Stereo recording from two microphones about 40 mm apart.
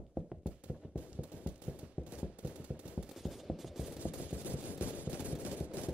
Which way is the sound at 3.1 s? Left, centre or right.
Centre.